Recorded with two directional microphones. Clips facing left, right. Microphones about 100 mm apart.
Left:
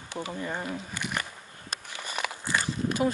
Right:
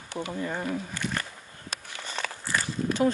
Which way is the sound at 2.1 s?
15° left (ahead or behind).